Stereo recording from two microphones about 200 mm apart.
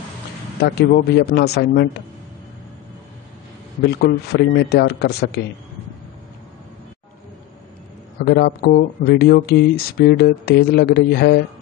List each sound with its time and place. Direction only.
0.7 s speech: 55° left (ahead or behind)
3.8 s speech: 55° left (ahead or behind)
8.3 s speech: 50° left (ahead or behind)